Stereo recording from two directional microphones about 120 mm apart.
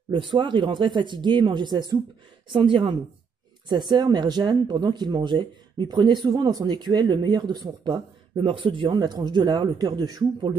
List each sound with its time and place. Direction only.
0.1 s speech: 45° right (ahead or behind)